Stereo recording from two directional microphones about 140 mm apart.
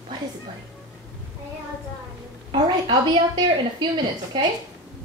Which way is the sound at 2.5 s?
35° right (ahead or behind).